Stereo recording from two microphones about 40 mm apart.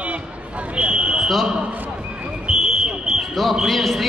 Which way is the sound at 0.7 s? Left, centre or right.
Right.